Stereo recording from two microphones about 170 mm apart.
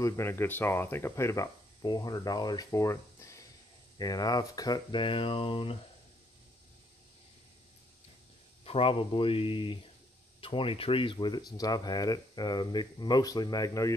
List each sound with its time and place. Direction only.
0.0 s speech: 15° left (ahead or behind); by 5.8 s 30° left (ahead or behind)
8.6 s speech: 35° left (ahead or behind)